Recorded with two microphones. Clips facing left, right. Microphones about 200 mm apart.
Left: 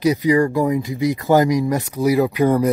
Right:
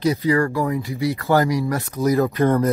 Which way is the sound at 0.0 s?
15° left (ahead or behind).